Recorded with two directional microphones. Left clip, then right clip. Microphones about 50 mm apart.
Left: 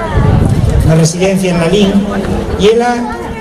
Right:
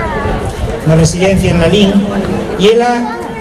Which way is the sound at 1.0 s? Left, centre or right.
Centre.